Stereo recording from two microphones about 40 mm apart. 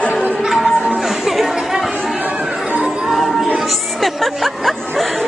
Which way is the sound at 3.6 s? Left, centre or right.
Centre.